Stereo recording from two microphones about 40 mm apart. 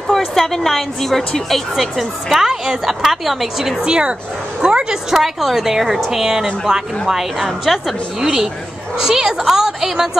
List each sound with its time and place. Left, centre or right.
0.1 s a woman's voice: centre
3.8 s a woman's voice: centre
5.1 s a woman's voice: centre
7.4 s a woman's voice: centre